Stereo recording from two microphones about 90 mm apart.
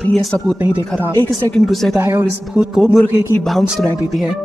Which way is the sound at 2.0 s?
20° right (ahead or behind).